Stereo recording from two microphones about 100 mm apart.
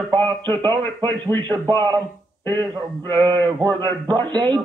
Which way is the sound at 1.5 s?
45° right (ahead or behind).